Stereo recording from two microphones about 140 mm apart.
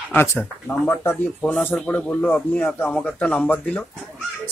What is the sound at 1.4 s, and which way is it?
Speech, 10° left (ahead or behind).